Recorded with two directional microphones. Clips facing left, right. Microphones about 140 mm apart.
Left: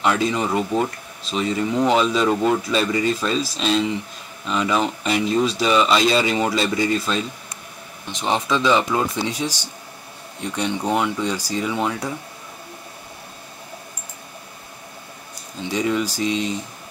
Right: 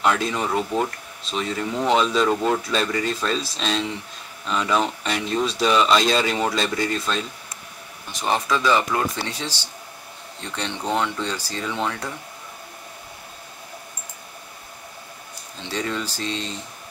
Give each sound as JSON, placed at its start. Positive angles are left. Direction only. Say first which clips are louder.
{"t": 0.0, "sound": "speech", "louder": "left 2 dB", "side_deg": 0}
{"t": 8.1, "sound": "speech", "louder": "left 1 dB", "side_deg": 20}
{"t": 15.6, "sound": "speech", "louder": "left 6 dB", "side_deg": 10}